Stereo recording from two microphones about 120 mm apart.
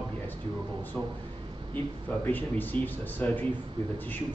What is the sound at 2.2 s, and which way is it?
Speech, 15° left (ahead or behind).